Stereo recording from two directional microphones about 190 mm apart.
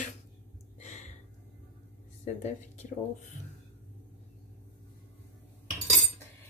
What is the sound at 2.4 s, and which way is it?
Speech, 40° left (ahead or behind).